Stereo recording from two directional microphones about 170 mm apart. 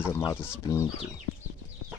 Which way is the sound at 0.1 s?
20° left (ahead or behind).